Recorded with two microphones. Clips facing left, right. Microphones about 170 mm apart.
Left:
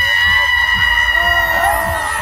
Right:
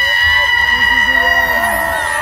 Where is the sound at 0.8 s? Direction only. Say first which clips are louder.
Right 3 dB; 35° right (ahead or behind).